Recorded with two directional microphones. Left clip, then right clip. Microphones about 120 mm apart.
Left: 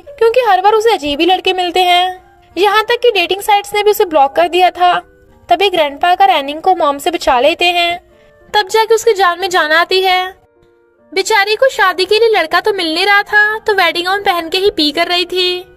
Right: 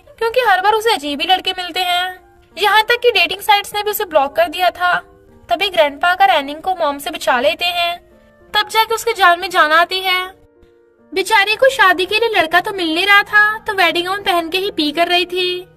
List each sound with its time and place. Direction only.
0.1 s a woman's voice: 30° left (ahead or behind); by 15.6 s 55° left (ahead or behind)